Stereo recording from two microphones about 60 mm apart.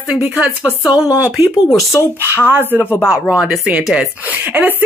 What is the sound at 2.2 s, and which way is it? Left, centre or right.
Speech, right.